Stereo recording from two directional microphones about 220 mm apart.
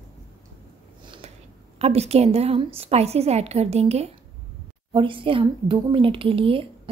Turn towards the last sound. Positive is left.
turn(degrees=-25)  # may be behind; listen again after turning